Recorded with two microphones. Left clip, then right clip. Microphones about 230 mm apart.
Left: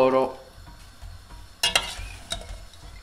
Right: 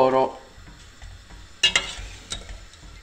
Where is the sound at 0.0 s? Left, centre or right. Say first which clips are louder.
Right 1 dB; centre.